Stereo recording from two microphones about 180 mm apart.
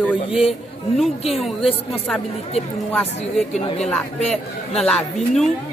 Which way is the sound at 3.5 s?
40° left (ahead or behind).